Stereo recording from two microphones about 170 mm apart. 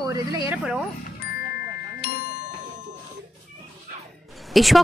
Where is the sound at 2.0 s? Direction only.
65° left (ahead or behind).